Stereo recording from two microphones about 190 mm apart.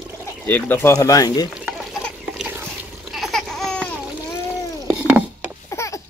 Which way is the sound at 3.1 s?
Centre (ahead or behind).